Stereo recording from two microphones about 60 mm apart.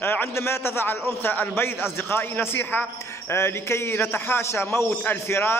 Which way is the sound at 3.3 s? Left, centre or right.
Left.